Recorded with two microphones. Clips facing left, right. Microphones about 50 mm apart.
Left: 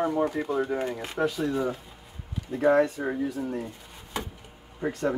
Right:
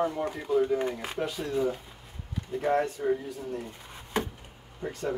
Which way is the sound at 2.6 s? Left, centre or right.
Left.